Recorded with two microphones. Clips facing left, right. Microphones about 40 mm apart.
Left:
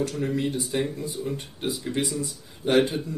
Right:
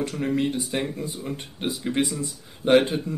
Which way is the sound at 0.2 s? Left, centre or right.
Right.